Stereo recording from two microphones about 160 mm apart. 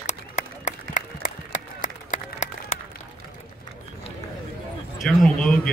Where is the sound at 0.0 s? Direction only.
50° left (ahead or behind).